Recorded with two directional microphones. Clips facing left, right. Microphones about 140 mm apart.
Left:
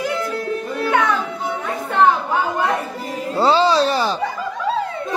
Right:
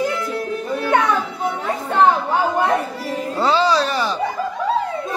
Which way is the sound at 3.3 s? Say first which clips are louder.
Left 2 dB; 30° left (ahead or behind).